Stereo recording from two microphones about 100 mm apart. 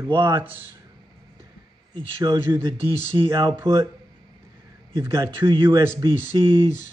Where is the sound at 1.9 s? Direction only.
35° right (ahead or behind).